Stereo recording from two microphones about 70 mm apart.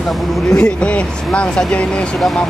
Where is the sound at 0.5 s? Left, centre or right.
Centre.